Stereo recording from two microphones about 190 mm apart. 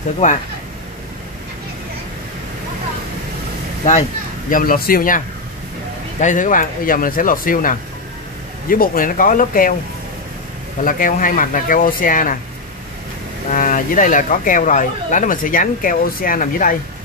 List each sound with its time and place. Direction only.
4.5 s speech: 45° left (ahead or behind)
10.8 s speech: 45° left (ahead or behind)
13.5 s speech: 45° left (ahead or behind)